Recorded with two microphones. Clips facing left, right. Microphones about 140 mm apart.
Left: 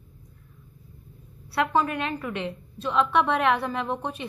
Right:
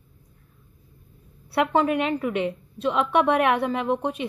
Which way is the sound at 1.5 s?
20° right (ahead or behind).